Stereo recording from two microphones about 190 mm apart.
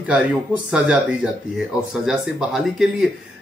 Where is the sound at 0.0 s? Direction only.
5° right (ahead or behind).